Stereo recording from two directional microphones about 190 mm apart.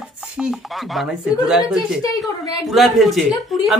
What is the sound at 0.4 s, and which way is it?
Speech, centre (ahead or behind).